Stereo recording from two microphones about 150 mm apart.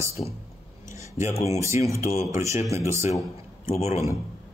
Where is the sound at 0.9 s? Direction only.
20° right (ahead or behind).